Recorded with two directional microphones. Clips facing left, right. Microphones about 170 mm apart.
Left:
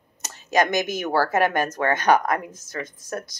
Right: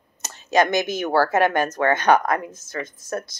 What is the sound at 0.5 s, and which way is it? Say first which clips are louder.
Speech: right 2 dB; 10° left (ahead or behind).